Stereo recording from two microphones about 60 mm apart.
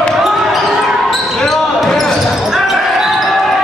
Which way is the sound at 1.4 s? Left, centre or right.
Centre.